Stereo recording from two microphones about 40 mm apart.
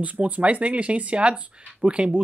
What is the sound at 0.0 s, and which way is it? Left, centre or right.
Speech, right.